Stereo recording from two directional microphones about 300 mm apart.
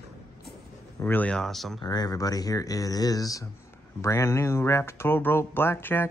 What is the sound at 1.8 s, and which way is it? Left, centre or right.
Speech, centre.